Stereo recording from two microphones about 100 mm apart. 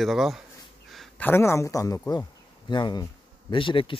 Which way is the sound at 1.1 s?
20° left (ahead or behind).